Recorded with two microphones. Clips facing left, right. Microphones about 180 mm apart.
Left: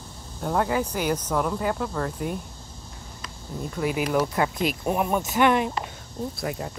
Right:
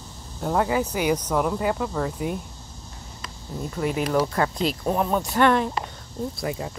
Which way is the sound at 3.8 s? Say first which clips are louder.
Right 1 dB; 5° left (ahead or behind).